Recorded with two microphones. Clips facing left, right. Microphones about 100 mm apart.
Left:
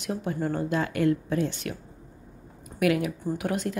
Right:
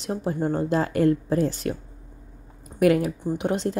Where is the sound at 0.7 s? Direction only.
35° right (ahead or behind).